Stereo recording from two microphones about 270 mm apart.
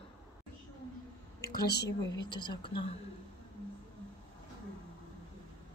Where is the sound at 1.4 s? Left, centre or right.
Left.